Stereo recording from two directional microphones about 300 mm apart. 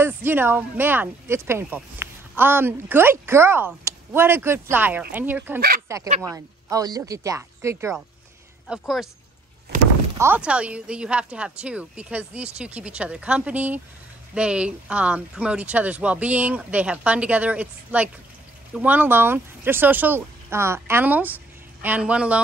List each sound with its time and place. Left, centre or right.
0.0 s speech: centre
6.0 s speech: right; by 9.1 s centre
10.1 s speech: centre